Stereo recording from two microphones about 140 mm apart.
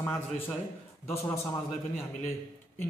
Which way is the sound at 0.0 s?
15° left (ahead or behind).